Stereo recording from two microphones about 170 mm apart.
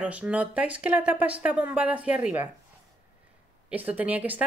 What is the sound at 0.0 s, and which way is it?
Speech, 10° right (ahead or behind).